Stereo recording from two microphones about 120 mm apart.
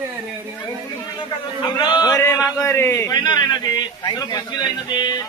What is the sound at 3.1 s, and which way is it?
A man's voice, 35° left (ahead or behind).